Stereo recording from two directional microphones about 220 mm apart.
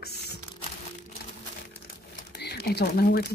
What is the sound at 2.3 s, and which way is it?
Speech, 50° left (ahead or behind).